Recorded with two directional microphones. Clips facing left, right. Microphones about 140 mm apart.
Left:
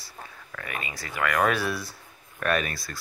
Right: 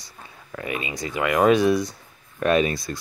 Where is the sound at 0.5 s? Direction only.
25° right (ahead or behind); by 1.4 s 10° right (ahead or behind).